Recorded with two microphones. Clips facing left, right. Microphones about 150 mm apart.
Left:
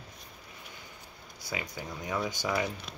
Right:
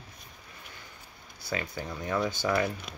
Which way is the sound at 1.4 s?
15° left (ahead or behind).